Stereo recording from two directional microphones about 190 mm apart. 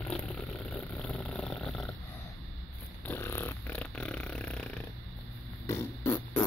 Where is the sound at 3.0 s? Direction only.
10° left (ahead or behind).